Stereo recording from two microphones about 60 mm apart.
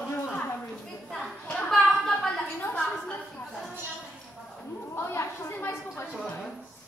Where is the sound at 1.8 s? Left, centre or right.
Centre.